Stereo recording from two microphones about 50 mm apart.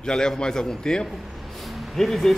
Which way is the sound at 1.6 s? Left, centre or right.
Centre.